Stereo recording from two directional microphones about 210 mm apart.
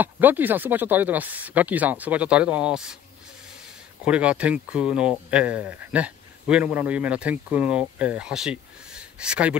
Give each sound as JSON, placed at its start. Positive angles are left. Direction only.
{"t": 0.0, "sound": "speech", "side_deg": -10}
{"t": 4.0, "sound": "speech", "side_deg": -5}